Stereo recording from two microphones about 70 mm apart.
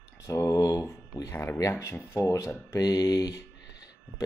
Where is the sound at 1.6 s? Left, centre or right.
Left.